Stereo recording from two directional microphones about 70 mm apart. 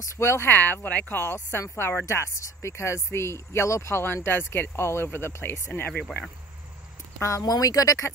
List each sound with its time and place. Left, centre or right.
0.0 s speech: left
4.0 s speech: left
7.2 s speech: left